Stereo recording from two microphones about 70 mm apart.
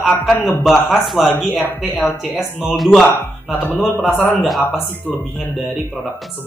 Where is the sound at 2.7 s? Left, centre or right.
Centre.